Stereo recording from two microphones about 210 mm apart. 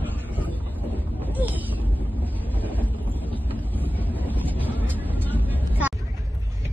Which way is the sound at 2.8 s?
10° left (ahead or behind).